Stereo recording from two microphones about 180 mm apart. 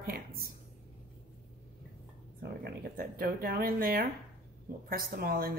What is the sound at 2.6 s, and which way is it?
Speech, 55° right (ahead or behind).